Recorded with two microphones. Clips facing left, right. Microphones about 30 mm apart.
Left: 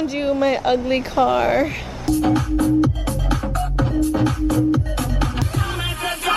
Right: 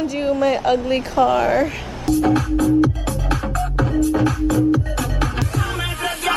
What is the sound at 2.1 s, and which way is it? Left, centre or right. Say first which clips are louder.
Music: right 1 dB; right.